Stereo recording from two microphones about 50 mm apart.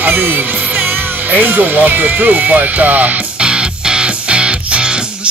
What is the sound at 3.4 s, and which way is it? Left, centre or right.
Music, centre.